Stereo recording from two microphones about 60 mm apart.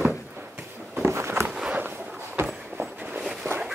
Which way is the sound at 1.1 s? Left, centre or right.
Right.